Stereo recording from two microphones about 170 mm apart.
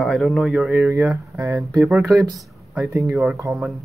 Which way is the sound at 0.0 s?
Centre (ahead or behind).